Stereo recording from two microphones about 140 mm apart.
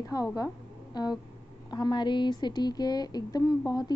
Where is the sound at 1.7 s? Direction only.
30° left (ahead or behind).